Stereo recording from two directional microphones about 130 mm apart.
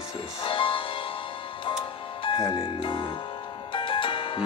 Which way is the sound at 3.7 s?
40° left (ahead or behind).